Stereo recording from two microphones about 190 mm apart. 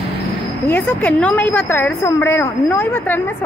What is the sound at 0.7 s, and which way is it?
A woman's voice, 10° left (ahead or behind).